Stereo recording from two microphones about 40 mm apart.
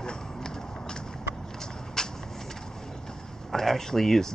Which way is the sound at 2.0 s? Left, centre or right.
Centre.